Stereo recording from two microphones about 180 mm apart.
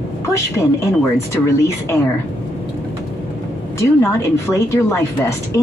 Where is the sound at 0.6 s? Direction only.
15° left (ahead or behind).